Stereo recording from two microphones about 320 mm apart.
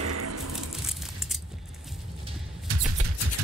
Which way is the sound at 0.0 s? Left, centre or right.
Right.